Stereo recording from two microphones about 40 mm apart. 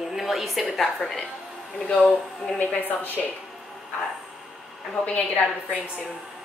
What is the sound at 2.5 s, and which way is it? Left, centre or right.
Speech, left.